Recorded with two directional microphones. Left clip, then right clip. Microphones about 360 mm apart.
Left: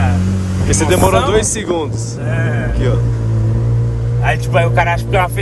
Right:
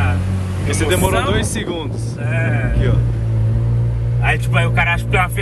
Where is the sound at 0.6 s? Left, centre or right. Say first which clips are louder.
Left 5 dB; centre.